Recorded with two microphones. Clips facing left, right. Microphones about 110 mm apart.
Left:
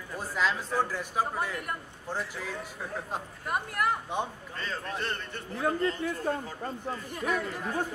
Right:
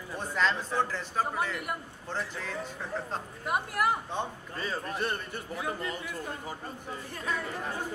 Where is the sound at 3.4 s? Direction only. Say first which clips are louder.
Right 2 dB; 5° right (ahead or behind).